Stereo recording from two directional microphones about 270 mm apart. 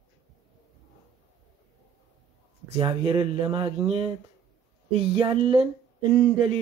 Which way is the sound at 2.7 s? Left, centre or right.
Centre.